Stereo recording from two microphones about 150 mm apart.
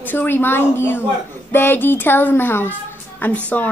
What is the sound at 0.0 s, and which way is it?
A woman's voice, 10° left (ahead or behind).